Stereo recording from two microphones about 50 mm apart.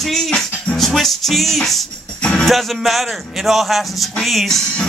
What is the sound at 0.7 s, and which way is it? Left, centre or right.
A man's voice, centre.